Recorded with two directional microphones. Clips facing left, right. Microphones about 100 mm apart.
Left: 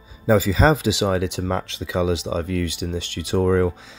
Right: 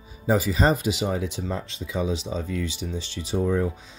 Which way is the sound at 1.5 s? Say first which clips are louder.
Left 6 dB; 90° left.